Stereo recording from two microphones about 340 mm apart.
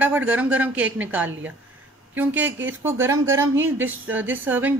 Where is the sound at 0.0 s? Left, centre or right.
Centre.